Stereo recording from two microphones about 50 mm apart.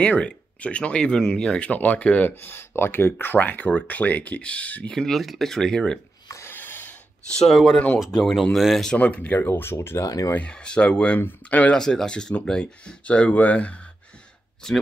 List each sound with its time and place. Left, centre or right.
0.0 s speech: left
1.7 s speech: left
2.2 s speech: left
3.3 s speech: left
4.9 s speech: centre
6.5 s a sound: left
7.2 s speech: centre
8.5 s speech: centre
8.9 s speech: left
9.5 s speech: left
10.3 s speech: left
11.1 s speech: left
11.7 s speech: centre; by 13.7 s left
14.6 s speech: centre